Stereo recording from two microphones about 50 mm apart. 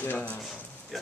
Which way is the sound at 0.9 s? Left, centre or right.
Centre.